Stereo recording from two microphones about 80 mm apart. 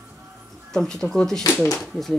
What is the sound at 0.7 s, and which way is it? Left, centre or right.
Speech, centre.